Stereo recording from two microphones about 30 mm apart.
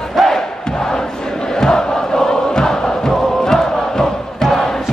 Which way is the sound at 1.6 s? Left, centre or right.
Left.